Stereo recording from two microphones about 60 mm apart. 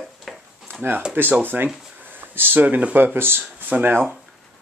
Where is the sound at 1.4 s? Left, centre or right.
Right.